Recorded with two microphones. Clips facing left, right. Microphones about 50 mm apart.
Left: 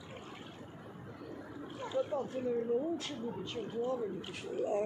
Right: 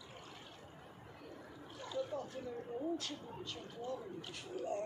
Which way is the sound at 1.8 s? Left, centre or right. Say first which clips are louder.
Left 6 dB; left.